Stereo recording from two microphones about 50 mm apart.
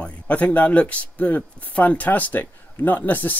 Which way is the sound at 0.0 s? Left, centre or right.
Left.